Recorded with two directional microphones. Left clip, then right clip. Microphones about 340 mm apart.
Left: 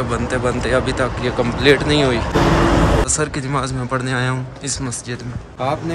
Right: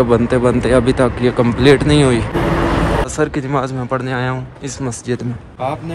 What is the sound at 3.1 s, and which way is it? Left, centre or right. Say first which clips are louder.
Speech: right 3 dB; centre.